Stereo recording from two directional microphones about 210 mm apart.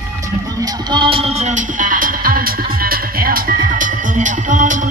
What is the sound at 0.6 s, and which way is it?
Music, 25° right (ahead or behind).